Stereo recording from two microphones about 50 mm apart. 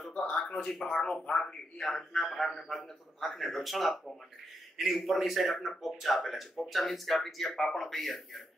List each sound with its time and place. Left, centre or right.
0.4 s speech: centre